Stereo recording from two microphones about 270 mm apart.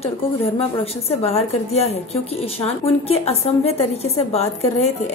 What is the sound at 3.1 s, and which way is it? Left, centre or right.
A woman's voice, left.